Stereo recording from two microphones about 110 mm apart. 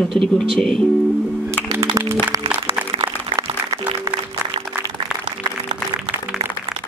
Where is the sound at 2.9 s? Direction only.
45° right (ahead or behind).